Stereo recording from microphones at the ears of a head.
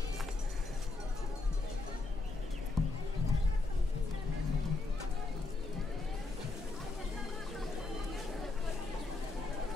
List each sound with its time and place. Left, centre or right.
2.7 s horse: left
4.3 s music: left